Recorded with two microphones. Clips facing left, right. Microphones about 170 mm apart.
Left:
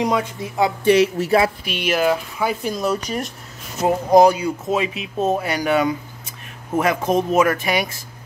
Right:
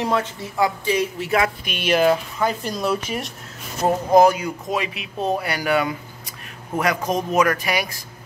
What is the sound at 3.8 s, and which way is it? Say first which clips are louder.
Speech: left 2 dB; 20° left (ahead or behind).